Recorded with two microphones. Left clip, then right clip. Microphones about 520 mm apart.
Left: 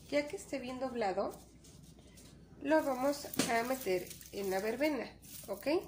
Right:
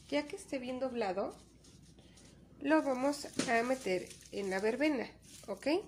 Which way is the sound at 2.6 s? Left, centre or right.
Right.